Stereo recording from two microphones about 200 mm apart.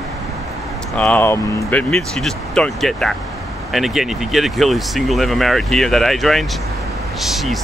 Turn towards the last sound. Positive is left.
turn(degrees=0)  # may be behind; listen again after turning